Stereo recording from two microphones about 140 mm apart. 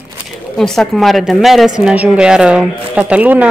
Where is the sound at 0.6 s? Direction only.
Centre (ahead or behind).